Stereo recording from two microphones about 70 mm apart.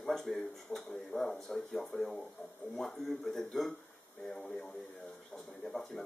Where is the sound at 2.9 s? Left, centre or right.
Centre.